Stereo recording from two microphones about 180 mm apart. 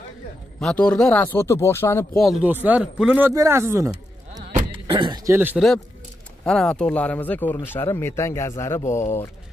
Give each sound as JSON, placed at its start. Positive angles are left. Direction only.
{"t": 0.6, "sound": "speech", "side_deg": 5}
{"t": 2.1, "sound": "speech", "side_deg": 0}
{"t": 3.9, "sound": "a sound", "side_deg": -40}
{"t": 4.8, "sound": "speech", "side_deg": -25}
{"t": 6.4, "sound": "speech", "side_deg": 5}